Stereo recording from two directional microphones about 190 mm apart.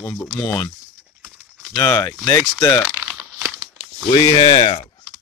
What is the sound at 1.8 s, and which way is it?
Speech, 15° left (ahead or behind).